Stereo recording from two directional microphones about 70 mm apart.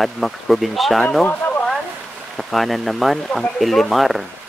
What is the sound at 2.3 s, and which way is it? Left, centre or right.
Speech, centre.